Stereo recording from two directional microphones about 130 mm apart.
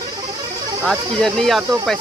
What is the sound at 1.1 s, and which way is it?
Speech, centre (ahead or behind).